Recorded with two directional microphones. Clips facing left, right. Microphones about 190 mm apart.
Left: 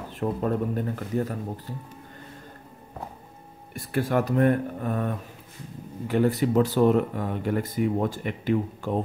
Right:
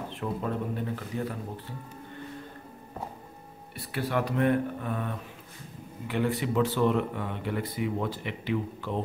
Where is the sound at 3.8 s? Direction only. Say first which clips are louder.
Left 5 dB; 45° left (ahead or behind).